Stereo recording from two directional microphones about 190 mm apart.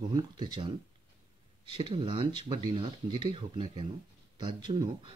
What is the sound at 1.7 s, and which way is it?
Speech, 25° right (ahead or behind).